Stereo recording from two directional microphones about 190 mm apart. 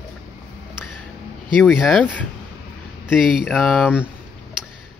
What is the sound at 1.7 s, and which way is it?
Speech, centre (ahead or behind).